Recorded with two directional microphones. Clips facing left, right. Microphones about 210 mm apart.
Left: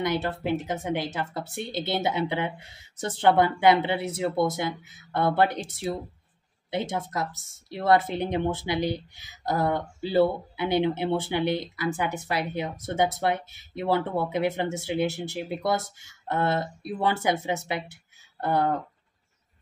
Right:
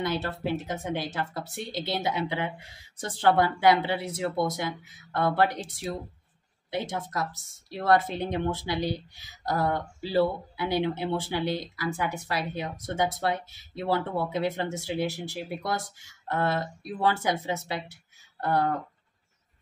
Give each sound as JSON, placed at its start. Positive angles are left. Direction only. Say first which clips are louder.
{"t": 0.0, "sound": "speech", "louder": "left 2 dB", "side_deg": 20}
{"t": 6.7, "sound": "speech", "louder": "left 2 dB", "side_deg": 20}